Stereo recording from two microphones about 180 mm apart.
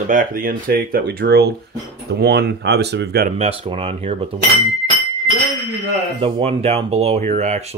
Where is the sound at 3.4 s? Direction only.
30° right (ahead or behind).